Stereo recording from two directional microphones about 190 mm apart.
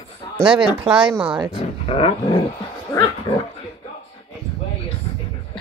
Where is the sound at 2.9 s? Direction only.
15° left (ahead or behind).